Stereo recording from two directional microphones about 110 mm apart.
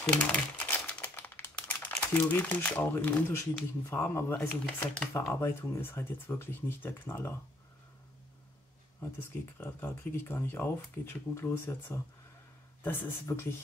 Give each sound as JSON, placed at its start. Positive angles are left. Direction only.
{"t": 0.0, "sound": "crumpling", "side_deg": 10}
{"t": 3.9, "sound": "speech", "side_deg": 20}
{"t": 4.6, "sound": "speech", "side_deg": 10}
{"t": 5.3, "sound": "speech", "side_deg": 20}
{"t": 9.6, "sound": "speech", "side_deg": 20}